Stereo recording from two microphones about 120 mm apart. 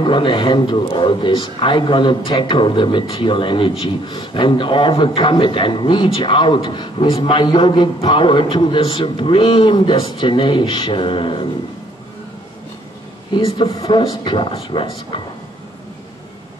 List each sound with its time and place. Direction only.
0.0 s a man's voice: 40° left (ahead or behind)
13.3 s a man's voice: 45° left (ahead or behind)